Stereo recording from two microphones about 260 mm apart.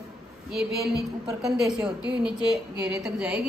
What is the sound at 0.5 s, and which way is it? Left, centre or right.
A woman's voice, centre.